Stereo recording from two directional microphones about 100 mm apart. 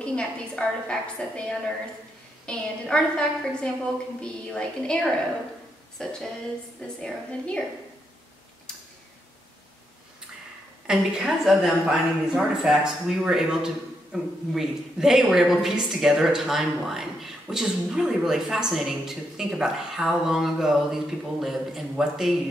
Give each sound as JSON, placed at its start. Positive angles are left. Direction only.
{"t": 0.0, "sound": "a woman's voice", "side_deg": 10}
{"t": 10.9, "sound": "speech", "side_deg": -5}